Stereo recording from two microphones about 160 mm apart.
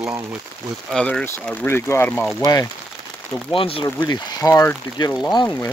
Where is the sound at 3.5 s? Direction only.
35° left (ahead or behind).